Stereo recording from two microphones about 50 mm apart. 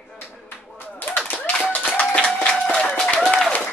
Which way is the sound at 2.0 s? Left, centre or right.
Centre.